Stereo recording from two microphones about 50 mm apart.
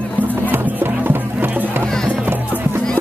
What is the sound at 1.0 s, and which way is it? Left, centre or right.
Music, right.